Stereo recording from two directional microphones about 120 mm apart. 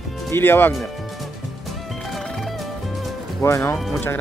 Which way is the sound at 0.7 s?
Centre (ahead or behind).